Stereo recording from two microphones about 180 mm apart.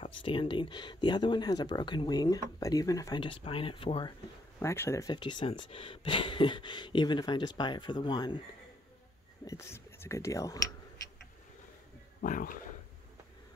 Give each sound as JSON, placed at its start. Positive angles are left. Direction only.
{"t": 0.2, "sound": "speech", "side_deg": 30}
{"t": 4.6, "sound": "speech", "side_deg": 15}
{"t": 9.4, "sound": "speech", "side_deg": 15}
{"t": 12.2, "sound": "speech", "side_deg": 50}